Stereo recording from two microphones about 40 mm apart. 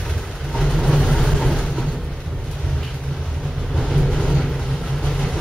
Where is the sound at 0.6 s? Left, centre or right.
Centre.